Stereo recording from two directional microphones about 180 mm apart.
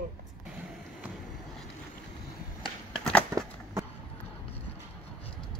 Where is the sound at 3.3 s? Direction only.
15° right (ahead or behind).